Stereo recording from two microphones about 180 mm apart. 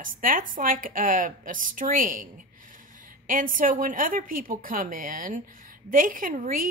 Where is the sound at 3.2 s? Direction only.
50° right (ahead or behind).